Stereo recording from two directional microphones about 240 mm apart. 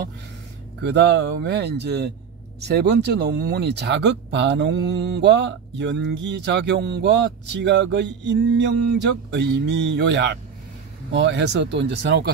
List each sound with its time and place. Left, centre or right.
0.8 s speech: right